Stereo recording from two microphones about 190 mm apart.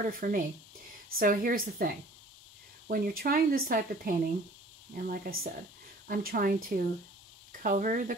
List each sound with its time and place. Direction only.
0.2 s speech: 50° right (ahead or behind)
2.9 s speech: 50° right (ahead or behind)